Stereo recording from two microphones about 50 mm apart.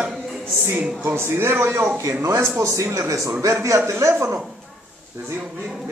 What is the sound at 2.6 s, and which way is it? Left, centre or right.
Speech, right.